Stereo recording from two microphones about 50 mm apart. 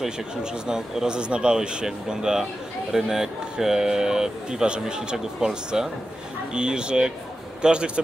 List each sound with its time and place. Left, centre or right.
0.0 s a man's voice: centre